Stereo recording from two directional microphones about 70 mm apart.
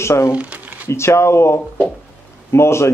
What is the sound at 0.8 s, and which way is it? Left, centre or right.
Speech, left.